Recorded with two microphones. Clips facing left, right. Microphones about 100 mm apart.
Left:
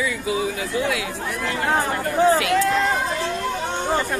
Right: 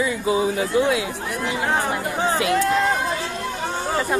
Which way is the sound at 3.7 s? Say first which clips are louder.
Even; 5° right (ahead or behind).